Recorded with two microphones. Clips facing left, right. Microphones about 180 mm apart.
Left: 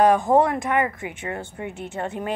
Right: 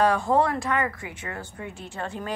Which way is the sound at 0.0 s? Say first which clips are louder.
Left 4 dB; 20° left (ahead or behind).